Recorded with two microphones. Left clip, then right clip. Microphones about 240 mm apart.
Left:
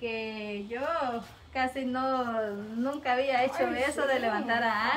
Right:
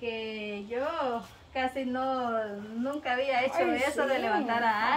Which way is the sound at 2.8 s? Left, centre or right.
Centre.